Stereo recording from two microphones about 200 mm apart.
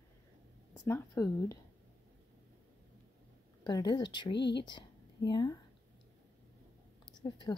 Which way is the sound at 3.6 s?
20° left (ahead or behind).